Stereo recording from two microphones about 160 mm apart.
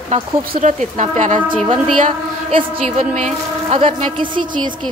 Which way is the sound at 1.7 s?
50° right (ahead or behind).